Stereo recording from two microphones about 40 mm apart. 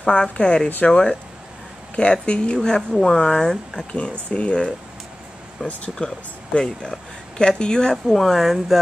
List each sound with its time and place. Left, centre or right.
0.0 s speech: left
2.2 s speech: left
2.9 s speech: centre
3.9 s speech: left
5.6 s speech: centre
6.0 s speech: left
7.9 s speech: centre